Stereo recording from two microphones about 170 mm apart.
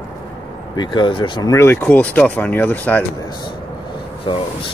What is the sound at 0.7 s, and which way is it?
Speech, 25° left (ahead or behind).